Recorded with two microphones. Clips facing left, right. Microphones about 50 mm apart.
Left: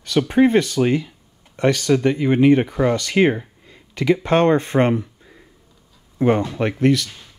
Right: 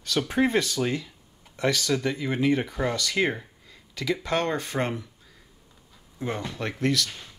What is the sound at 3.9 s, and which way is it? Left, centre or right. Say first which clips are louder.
Speech: left 9 dB; left.